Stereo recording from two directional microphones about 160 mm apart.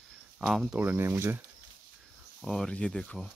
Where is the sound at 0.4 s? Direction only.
Centre (ahead or behind).